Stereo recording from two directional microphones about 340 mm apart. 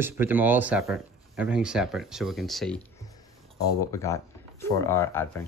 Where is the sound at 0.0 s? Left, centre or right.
Centre.